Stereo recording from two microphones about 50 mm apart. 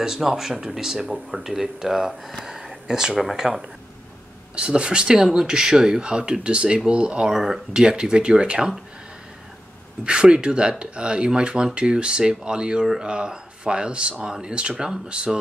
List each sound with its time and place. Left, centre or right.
0.0 s speech: centre
4.6 s speech: right
7.3 s speech: centre
10.0 s speech: centre